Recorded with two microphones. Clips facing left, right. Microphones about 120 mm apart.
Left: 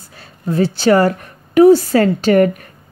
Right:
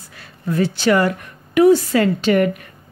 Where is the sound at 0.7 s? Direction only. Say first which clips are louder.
Left 5 dB; 35° left (ahead or behind).